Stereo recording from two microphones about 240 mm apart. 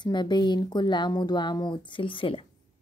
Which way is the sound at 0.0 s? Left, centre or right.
Centre.